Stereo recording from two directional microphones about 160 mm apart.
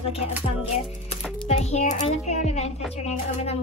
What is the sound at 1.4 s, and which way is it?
Speech, 45° left (ahead or behind).